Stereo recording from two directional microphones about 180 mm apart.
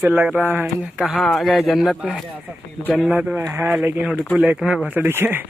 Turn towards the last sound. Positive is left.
turn(degrees=-10)  # may be behind; listen again after turning